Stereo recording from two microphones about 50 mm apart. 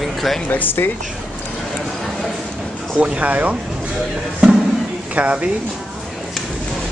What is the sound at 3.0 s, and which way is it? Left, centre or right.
Speech, right.